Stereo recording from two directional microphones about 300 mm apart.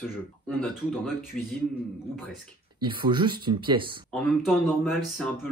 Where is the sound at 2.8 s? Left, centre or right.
Centre.